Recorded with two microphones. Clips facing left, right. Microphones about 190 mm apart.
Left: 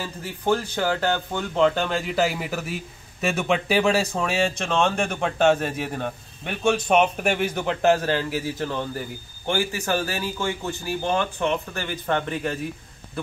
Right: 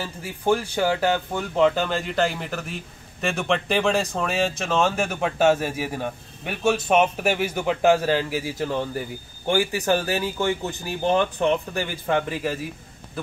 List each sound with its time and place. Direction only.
0.0 s speech: 10° right (ahead or behind)